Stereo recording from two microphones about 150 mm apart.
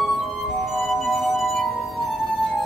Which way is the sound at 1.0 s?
Centre (ahead or behind).